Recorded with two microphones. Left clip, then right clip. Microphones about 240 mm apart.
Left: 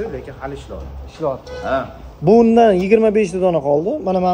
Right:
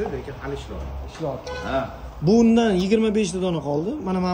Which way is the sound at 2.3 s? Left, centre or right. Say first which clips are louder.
Left 8 dB; centre.